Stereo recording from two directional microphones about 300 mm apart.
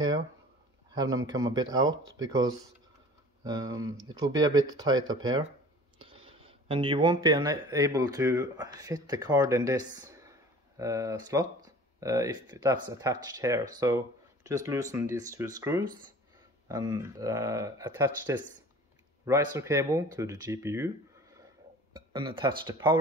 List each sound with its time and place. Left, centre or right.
0.9 s speech: centre